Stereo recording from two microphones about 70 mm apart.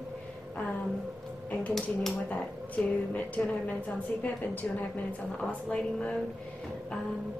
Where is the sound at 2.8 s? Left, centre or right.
Centre.